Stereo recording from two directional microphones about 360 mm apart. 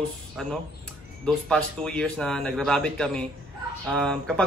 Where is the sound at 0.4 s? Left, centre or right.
Centre.